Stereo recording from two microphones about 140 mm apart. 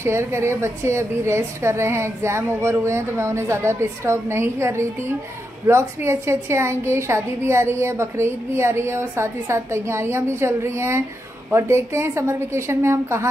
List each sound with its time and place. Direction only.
0.0 s a woman's voice: 20° right (ahead or behind)